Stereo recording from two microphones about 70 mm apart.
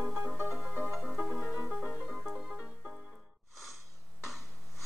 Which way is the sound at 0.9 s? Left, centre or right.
Centre.